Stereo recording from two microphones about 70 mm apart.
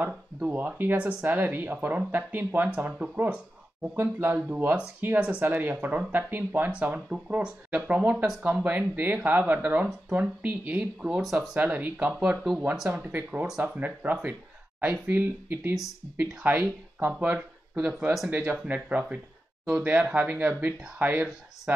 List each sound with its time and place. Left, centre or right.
0.0 s speech: right
10.8 s speech: centre
11.5 s speech: right
12.1 s speech: centre
13.1 s speech: right